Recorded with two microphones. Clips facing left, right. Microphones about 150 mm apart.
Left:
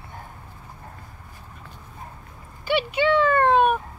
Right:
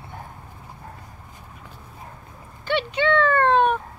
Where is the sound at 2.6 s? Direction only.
10° left (ahead or behind).